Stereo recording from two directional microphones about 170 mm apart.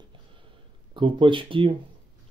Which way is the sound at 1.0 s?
30° right (ahead or behind).